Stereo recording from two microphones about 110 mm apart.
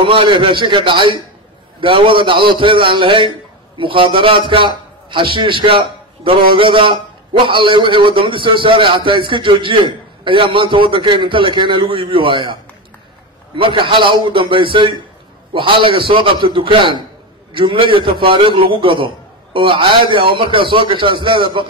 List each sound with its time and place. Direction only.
0.0 s a man's voice: 55° right (ahead or behind)
13.6 s a man's voice: 50° right (ahead or behind)